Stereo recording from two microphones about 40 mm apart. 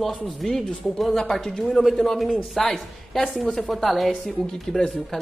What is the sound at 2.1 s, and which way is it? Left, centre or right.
Speech, centre.